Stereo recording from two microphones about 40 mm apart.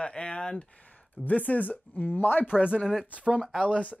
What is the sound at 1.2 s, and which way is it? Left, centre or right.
Speech, left.